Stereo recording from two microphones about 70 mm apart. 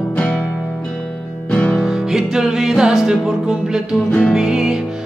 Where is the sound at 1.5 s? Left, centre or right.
Centre.